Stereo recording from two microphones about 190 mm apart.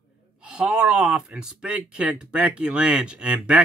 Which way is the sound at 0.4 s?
5° right (ahead or behind).